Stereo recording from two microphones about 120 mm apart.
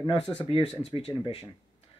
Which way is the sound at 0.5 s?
50° left (ahead or behind).